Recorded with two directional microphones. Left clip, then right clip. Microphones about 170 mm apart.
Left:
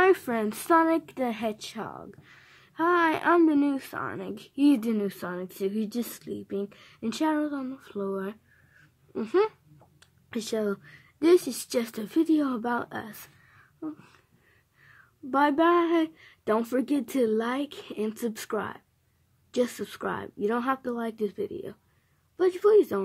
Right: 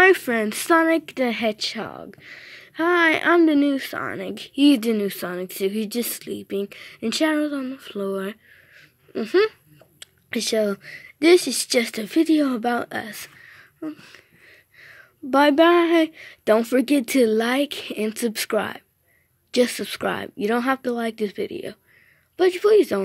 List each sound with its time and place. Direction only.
0.0 s a woman's voice: 15° right (ahead or behind)